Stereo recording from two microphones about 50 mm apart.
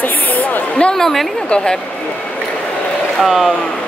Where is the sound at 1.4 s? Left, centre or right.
Centre.